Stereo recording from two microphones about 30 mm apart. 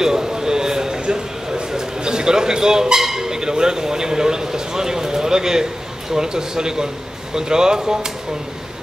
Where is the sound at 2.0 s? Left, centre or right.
Right.